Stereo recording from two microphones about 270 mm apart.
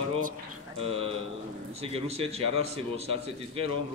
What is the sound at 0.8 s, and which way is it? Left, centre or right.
A man's voice, right.